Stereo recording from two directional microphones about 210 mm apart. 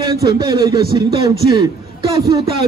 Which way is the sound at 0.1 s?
15° right (ahead or behind).